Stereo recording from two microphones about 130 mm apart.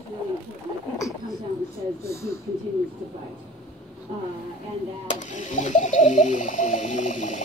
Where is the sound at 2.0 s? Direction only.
20° left (ahead or behind).